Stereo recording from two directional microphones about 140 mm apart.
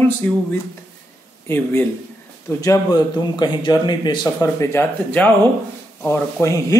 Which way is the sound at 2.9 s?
30° left (ahead or behind).